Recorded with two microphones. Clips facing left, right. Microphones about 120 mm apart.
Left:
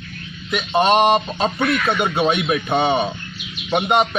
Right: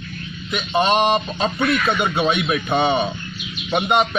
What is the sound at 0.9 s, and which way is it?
A man's voice, 5° left (ahead or behind).